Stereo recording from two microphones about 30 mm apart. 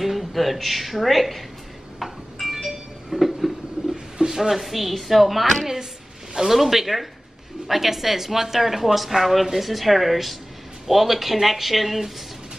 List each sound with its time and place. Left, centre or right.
0.2 s speech: centre
2.3 s music: centre
4.4 s a man's voice: centre